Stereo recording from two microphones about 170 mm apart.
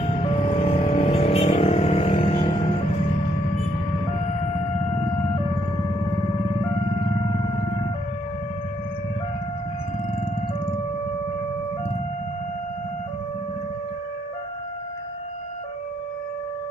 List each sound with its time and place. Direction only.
0.0 s vehicle: 30° left (ahead or behind)
2.5 s music: 35° left (ahead or behind)